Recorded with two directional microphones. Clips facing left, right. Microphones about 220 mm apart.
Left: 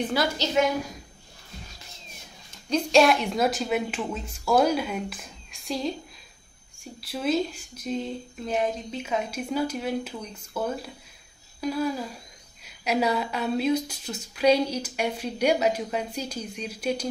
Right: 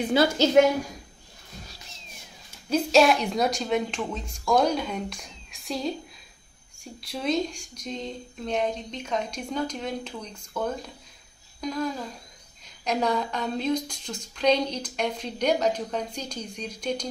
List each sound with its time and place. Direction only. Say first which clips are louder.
2.7 s speech: even; centre (ahead or behind)
7.0 s a woman's voice: left 1 dB; 5° left (ahead or behind)